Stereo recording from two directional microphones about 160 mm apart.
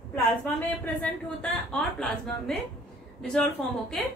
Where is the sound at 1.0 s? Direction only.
5° left (ahead or behind).